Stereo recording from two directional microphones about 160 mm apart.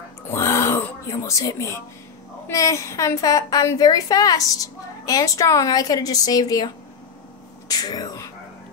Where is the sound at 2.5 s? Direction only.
20° left (ahead or behind).